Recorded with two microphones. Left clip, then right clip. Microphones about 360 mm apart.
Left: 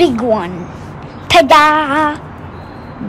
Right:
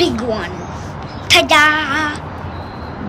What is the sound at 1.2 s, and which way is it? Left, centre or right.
Female singing, centre.